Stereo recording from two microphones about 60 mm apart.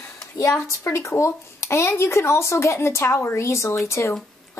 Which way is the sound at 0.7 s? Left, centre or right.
Left.